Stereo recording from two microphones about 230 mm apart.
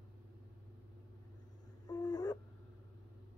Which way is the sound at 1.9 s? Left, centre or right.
Centre.